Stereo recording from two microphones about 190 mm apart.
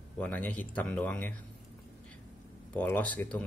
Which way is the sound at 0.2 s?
5° left (ahead or behind).